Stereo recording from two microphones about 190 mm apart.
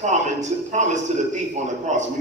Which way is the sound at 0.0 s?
40° right (ahead or behind).